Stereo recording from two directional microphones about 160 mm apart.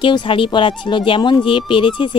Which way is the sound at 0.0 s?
30° left (ahead or behind).